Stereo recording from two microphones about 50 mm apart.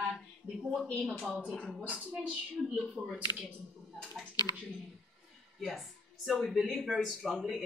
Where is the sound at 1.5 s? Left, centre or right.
Centre.